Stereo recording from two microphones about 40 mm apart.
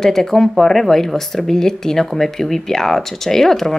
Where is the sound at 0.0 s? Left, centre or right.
Centre.